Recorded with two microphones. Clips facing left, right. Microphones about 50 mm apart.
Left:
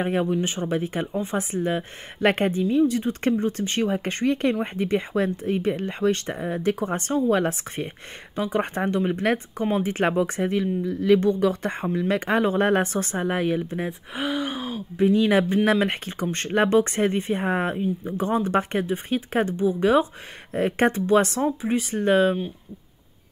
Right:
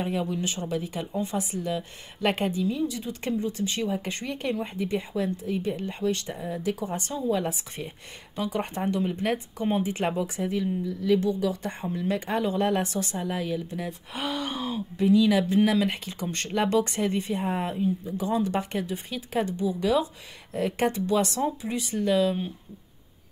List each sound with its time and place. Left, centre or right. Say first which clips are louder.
0.0 s a woman's voice: left 5 dB; left
8.4 s a woman's voice: left 4 dB; left
11.9 s speech: left 5 dB; left
12.4 s speech: left 4 dB; left
14.1 s speech: left 3 dB; centre
15.0 s speech: left 2 dB; left